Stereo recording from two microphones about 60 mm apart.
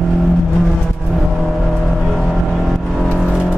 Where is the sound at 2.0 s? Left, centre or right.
Centre.